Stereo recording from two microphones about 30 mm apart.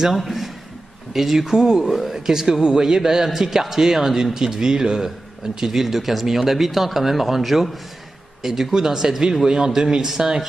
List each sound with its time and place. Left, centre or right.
0.1 s a man's voice: centre
1.9 s speech: centre
2.1 s speech: centre
9.8 s speech: right